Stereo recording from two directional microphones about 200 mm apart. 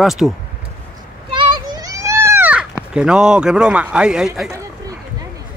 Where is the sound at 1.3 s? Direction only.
25° right (ahead or behind); by 2.7 s 10° right (ahead or behind).